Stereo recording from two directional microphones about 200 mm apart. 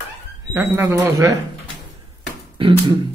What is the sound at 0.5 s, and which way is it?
Speech, 15° right (ahead or behind).